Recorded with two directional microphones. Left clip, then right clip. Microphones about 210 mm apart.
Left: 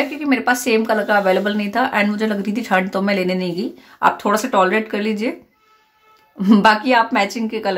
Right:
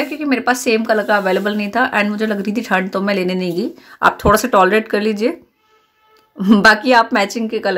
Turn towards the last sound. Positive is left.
turn(degrees=-15)  # may be behind; listen again after turning